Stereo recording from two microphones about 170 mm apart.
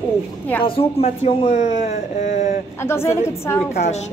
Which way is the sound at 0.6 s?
35° left (ahead or behind).